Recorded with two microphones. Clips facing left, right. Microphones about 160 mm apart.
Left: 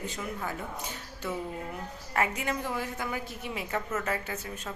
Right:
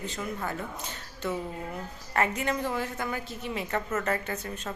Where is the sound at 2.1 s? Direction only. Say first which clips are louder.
Right 2 dB; 10° left (ahead or behind).